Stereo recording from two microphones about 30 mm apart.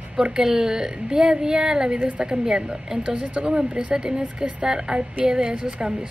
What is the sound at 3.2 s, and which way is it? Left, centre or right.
A woman's voice, right.